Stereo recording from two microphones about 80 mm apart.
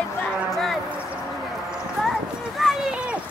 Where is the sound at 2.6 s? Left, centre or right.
Centre.